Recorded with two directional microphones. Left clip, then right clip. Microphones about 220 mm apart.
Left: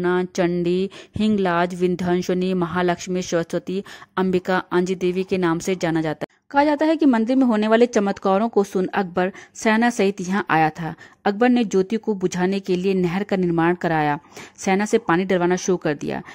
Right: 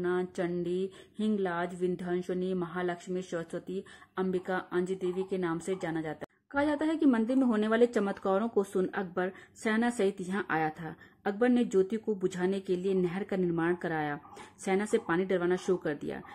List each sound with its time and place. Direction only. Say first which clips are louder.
0.0 s speech: left 11 dB; 40° left (ahead or behind)